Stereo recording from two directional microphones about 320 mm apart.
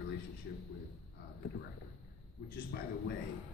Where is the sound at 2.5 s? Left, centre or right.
Left.